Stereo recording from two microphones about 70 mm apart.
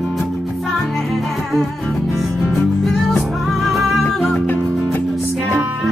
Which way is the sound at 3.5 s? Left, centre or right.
Centre.